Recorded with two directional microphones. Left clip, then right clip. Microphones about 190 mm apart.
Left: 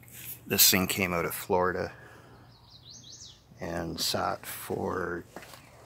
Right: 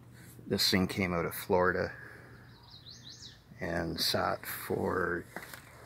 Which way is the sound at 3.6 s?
Centre (ahead or behind).